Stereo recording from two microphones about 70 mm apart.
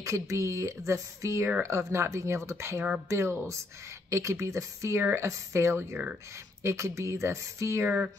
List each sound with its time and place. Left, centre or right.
0.0 s speech: right
7.8 s speech: right